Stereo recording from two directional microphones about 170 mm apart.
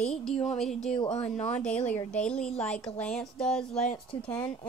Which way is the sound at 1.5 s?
5° left (ahead or behind).